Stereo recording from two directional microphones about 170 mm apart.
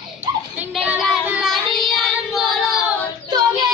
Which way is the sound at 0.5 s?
5° right (ahead or behind).